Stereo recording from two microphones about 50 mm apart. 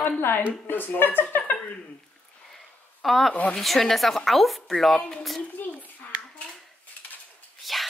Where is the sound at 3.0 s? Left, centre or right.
Centre.